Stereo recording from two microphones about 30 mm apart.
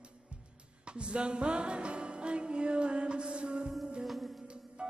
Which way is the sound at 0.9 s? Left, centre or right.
Right.